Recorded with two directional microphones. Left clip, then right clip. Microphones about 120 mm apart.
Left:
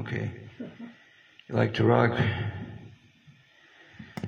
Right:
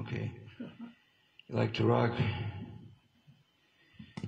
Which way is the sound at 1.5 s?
25° right (ahead or behind).